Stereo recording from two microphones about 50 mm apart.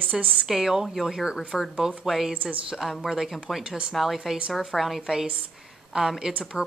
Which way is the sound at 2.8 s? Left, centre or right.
Centre.